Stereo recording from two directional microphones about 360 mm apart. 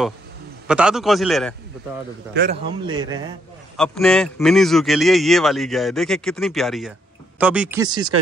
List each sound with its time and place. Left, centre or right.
0.7 s speech: centre
2.5 s speech: centre
3.7 s speech: centre